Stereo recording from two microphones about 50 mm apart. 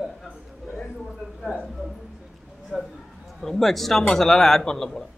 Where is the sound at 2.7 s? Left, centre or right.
Centre.